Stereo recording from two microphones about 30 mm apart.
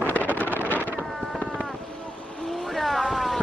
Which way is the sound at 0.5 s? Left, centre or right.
Left.